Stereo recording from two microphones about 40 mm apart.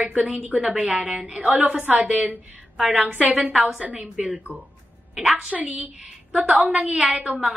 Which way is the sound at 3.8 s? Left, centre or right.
Right.